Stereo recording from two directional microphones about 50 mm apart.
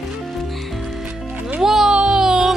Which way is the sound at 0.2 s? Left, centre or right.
Centre.